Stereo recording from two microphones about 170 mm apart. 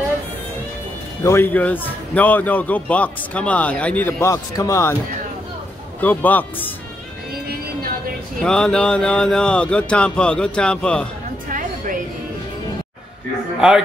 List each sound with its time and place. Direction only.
1.2 s a man's voice: 15° left (ahead or behind)
5.9 s a man's voice: 10° left (ahead or behind)
8.4 s speech: 5° left (ahead or behind)
11.4 s music: 50° right (ahead or behind)